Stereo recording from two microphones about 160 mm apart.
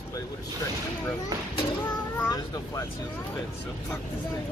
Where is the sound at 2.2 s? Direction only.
25° left (ahead or behind).